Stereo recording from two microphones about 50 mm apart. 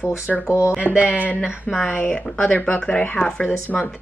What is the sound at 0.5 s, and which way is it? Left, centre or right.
Speech, left.